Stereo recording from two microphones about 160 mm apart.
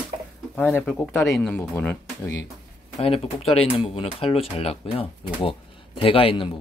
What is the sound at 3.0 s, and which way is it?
Speech, 40° left (ahead or behind).